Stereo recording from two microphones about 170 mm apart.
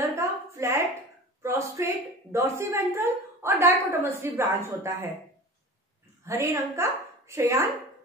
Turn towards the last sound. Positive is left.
turn(degrees=-15)  # may be behind; listen again after turning